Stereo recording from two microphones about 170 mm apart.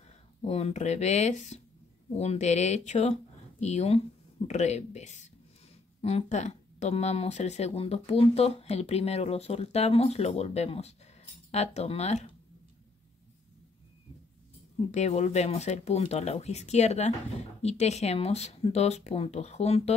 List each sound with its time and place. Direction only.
0.4 s speech: 35° left (ahead or behind)
14.9 s speech: 40° left (ahead or behind)